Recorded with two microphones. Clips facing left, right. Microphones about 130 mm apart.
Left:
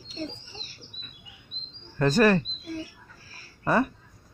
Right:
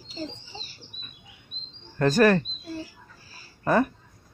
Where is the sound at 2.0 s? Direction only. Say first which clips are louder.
Right 1 dB; 45° right (ahead or behind).